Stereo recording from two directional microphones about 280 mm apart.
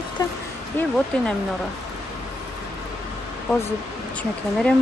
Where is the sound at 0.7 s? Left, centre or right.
Centre.